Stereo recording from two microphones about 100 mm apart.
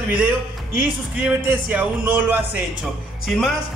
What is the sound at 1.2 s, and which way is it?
A man's voice, 20° right (ahead or behind).